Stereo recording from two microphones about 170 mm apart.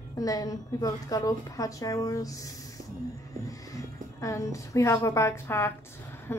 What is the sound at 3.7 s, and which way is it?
A woman's voice, 20° left (ahead or behind).